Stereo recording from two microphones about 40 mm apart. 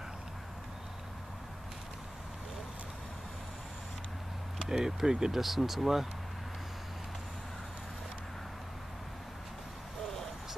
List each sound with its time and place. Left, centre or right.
4.6 s speech: centre
5.4 s speech: centre